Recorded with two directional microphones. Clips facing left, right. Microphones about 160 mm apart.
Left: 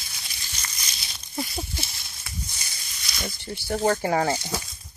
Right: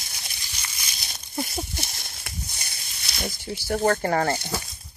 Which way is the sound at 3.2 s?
10° right (ahead or behind).